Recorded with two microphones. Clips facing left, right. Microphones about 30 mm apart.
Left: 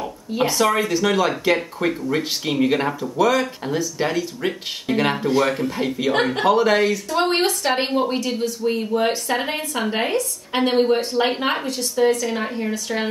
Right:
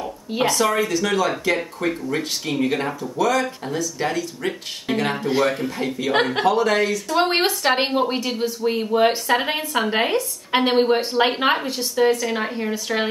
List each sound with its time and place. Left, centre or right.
0.5 s speech: centre
4.9 s a woman's voice: centre
5.4 s speech: centre
7.1 s a woman's voice: centre